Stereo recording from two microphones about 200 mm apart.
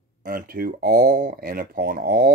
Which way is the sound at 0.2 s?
45° right (ahead or behind).